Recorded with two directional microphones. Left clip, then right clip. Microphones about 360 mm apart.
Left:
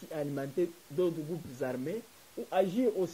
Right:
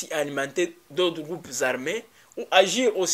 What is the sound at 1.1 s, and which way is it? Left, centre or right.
Speech, centre.